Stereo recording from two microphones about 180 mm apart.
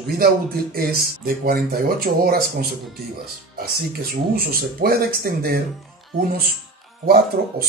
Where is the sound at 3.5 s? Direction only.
55° right (ahead or behind).